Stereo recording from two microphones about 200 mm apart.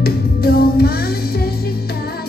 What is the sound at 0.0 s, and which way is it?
Music, 50° left (ahead or behind).